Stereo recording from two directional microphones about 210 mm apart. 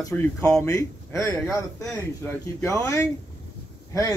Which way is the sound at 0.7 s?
15° left (ahead or behind).